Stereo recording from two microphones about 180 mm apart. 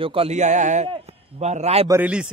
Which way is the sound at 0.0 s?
30° right (ahead or behind).